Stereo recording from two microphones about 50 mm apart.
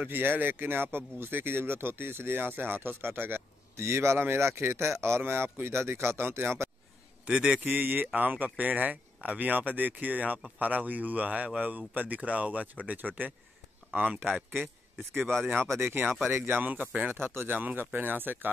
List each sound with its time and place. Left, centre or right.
0.0 s speech: right
3.7 s speech: right
7.2 s speech: centre
7.6 s speech: right
15.8 s speech: right
16.6 s speech: right